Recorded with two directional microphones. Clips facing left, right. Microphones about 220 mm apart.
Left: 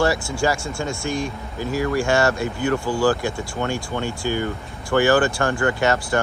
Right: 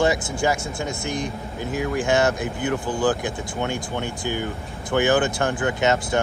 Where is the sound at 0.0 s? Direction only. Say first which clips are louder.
Left 1 dB; 20° right (ahead or behind).